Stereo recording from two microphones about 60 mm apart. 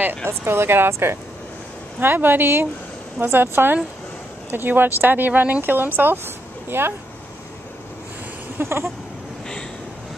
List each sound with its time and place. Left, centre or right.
0.3 s a woman's voice: right
8.5 s speech: right